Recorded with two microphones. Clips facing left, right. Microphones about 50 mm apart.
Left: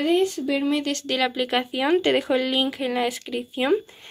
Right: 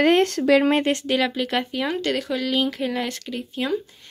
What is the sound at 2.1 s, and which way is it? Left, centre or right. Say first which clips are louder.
Speech: left 4 dB; left.